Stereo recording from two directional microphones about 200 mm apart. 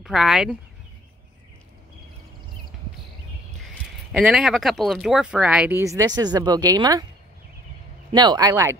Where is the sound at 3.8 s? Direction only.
5° right (ahead or behind); by 7.0 s 20° right (ahead or behind).